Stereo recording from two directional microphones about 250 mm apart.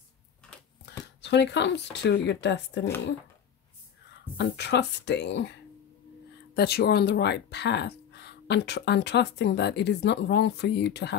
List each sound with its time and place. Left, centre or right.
0.4 s a sound: centre
1.2 s speech: left
4.4 s speech: left